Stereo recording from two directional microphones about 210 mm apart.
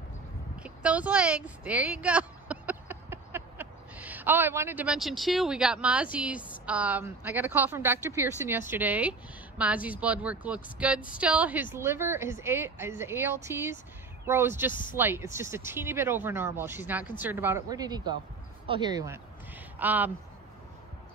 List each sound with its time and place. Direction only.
0.6 s a sound: 5° right (ahead or behind)
6.1 s a woman's voice: 5° right (ahead or behind)
14.7 s speech: 40° left (ahead or behind)
15.0 s a woman's voice: 10° right (ahead or behind)
19.8 s a woman's voice: 10° right (ahead or behind)